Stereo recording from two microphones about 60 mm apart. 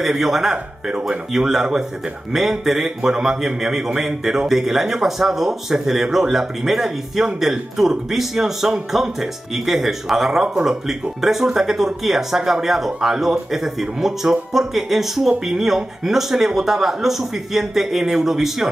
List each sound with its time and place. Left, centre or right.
0.0 s speech: centre
2.6 s speech: centre